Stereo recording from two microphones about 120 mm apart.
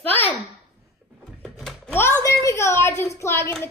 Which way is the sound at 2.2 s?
25° left (ahead or behind).